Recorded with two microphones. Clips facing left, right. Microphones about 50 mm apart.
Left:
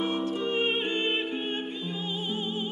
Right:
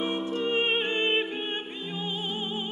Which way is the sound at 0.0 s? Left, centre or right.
Centre.